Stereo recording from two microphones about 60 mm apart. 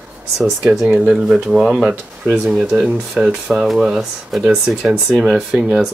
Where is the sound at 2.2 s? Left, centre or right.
Right.